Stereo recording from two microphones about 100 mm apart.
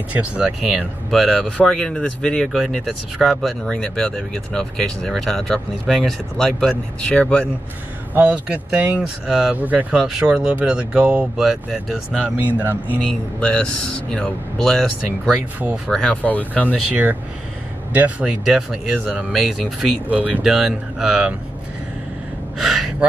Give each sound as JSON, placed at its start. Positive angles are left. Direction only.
{"t": 0.1, "sound": "speech", "side_deg": -10}
{"t": 0.7, "sound": "speech", "side_deg": 0}
{"t": 8.1, "sound": "speech", "side_deg": -15}
{"t": 12.4, "sound": "speech", "side_deg": -15}
{"t": 13.4, "sound": "speech", "side_deg": 10}
{"t": 15.9, "sound": "speech", "side_deg": 5}
{"t": 16.9, "sound": "speech", "side_deg": -15}
{"t": 18.4, "sound": "speech", "side_deg": -5}
{"t": 20.1, "sound": "speech", "side_deg": -15}
{"t": 20.4, "sound": "speech", "side_deg": -5}
{"t": 22.6, "sound": "gasp", "side_deg": 0}